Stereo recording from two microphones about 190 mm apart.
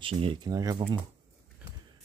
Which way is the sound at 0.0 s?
25° right (ahead or behind).